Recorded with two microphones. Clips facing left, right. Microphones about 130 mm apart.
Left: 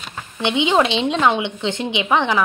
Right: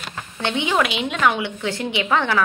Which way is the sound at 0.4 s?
20° left (ahead or behind).